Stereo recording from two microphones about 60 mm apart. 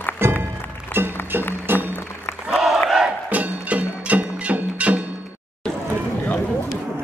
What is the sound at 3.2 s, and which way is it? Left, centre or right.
Music, right.